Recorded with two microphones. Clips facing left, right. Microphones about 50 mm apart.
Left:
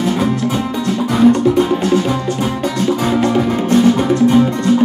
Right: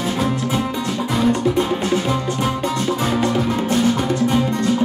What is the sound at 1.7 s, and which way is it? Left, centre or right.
Music, centre.